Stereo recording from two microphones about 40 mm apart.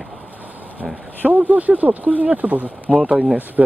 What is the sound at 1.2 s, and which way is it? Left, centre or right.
Speech, right.